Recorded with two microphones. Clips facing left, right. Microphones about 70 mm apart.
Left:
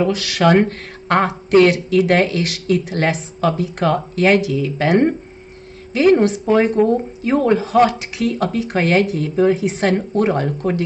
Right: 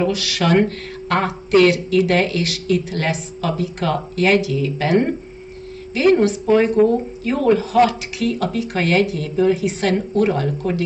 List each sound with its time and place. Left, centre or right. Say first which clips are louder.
0.0 s speech: left 4 dB; left
6.1 s speech: left 1 dB; left